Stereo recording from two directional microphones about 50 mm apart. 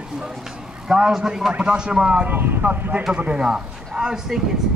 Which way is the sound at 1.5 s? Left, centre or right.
Right.